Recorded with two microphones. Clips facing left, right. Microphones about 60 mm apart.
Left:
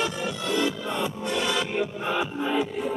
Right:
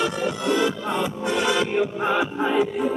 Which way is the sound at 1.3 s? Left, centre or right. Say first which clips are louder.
Right 6 dB; right.